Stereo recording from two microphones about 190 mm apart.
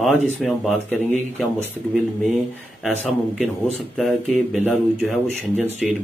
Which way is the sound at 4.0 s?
Centre (ahead or behind).